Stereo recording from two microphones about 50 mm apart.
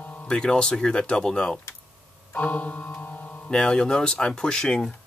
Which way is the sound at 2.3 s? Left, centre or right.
Left.